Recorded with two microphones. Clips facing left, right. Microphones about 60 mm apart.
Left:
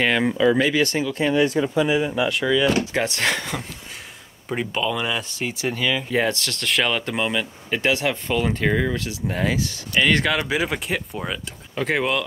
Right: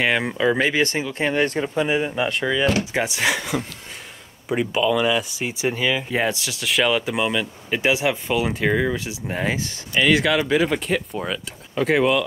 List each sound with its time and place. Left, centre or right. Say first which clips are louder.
0.0 s speech: left 1 dB; centre
0.4 s speech: left 1 dB; right
1.3 s speech: left 3 dB; right
2.9 s speech: right 1 dB; centre
5.3 s speech: right 2 dB; centre
7.8 s speech: right 2 dB; centre
9.9 s speech: right 2 dB; centre